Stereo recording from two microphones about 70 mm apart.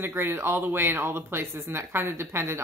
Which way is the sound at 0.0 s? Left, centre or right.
Right.